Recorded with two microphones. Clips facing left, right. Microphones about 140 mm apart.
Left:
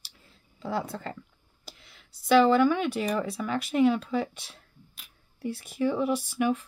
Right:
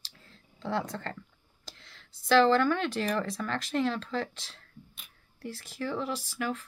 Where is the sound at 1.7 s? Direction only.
5° left (ahead or behind).